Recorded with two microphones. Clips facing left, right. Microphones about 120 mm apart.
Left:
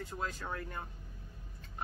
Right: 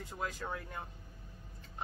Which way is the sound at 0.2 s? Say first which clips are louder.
Right 1 dB; 15° right (ahead or behind).